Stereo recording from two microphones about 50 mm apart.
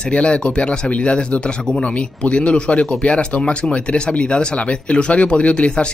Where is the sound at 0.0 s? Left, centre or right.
Left.